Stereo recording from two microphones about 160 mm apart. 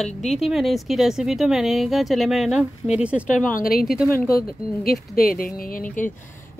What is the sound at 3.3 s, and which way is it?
A woman's voice, 60° left (ahead or behind).